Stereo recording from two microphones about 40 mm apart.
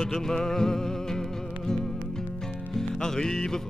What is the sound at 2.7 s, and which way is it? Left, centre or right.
Music, centre.